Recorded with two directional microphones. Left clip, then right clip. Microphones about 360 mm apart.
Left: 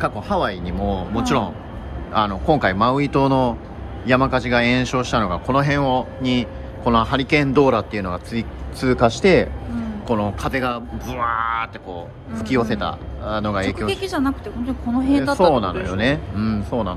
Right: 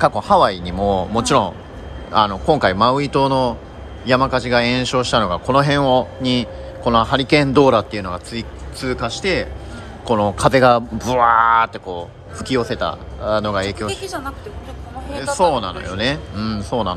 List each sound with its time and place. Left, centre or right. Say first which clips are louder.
0.0 s speech: right 8 dB; centre
14.0 s speech: left 4 dB; centre
15.5 s speech: left 1 dB; centre